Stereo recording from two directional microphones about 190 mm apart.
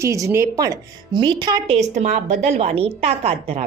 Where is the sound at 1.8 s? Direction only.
35° right (ahead or behind).